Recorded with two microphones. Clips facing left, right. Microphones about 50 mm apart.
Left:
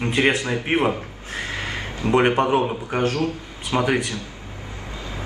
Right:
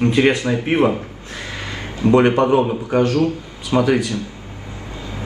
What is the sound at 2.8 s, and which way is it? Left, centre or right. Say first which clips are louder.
Speech: right 6 dB; left.